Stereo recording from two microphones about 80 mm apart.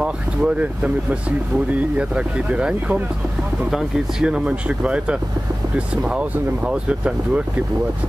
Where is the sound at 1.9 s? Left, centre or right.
Centre.